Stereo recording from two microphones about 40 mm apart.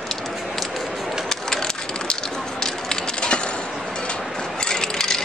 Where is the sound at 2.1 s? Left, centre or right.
Centre.